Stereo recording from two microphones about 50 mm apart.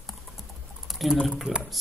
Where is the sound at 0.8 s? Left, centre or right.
Centre.